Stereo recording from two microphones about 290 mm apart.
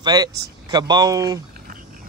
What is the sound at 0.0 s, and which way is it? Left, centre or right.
Speech, centre.